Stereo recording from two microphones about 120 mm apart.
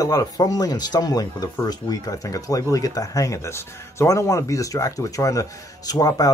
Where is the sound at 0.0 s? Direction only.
30° left (ahead or behind).